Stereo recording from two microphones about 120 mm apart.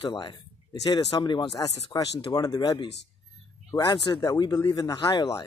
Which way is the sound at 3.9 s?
35° left (ahead or behind).